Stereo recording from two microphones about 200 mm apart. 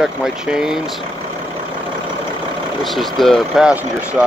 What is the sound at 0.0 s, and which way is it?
Speech, 5° right (ahead or behind).